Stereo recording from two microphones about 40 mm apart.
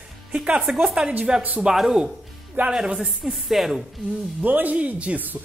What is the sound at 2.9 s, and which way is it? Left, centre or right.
Speech, right.